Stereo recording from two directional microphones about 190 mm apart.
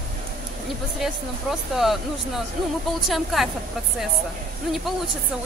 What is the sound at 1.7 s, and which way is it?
Speech, centre (ahead or behind).